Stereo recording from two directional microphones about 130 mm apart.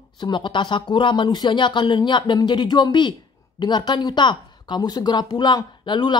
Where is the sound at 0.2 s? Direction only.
35° left (ahead or behind).